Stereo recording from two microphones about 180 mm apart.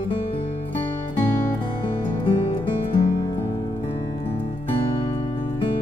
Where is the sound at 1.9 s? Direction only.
30° left (ahead or behind).